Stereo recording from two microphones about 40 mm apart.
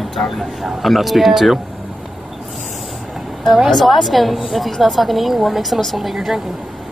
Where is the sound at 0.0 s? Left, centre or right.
Centre.